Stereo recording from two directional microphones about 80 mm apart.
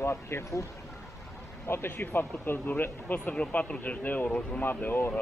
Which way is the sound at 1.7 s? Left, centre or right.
Left.